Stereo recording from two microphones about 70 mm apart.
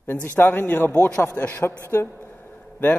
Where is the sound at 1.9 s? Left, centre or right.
Left.